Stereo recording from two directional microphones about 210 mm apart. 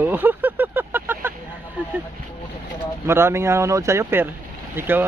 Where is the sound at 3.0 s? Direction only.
10° right (ahead or behind).